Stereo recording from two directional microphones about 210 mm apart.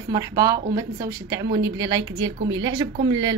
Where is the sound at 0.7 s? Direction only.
15° right (ahead or behind).